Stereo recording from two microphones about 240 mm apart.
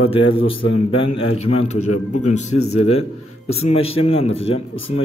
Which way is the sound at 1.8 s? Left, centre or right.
Left.